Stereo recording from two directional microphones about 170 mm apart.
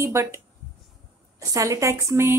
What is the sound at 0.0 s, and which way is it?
Speech, 15° right (ahead or behind).